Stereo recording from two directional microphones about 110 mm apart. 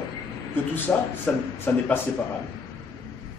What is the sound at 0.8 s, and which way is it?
Speech, 20° left (ahead or behind).